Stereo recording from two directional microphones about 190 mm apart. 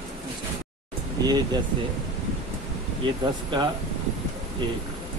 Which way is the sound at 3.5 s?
25° right (ahead or behind).